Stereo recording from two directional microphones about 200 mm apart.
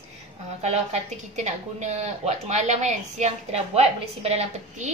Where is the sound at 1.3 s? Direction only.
35° right (ahead or behind).